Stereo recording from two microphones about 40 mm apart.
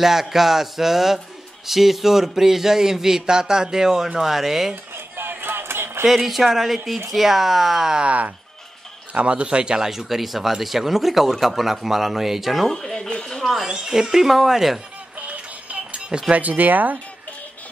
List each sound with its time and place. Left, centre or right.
0.0 s speech: centre
4.9 s music: right
6.0 s speech: centre
9.1 s a man's voice: right
9.8 s speech: centre
12.7 s speech: centre
13.7 s speech: centre
15.1 s music: right
16.3 s speech: right